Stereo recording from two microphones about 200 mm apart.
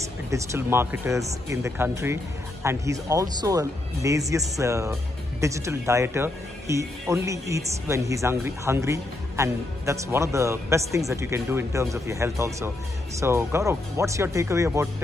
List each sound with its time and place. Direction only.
0.3 s speech: 15° right (ahead or behind)